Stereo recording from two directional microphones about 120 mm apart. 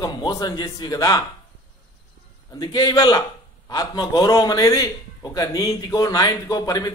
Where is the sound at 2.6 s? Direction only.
35° left (ahead or behind).